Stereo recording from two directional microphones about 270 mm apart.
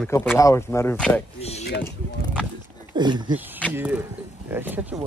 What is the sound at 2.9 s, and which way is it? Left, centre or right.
Speech, centre.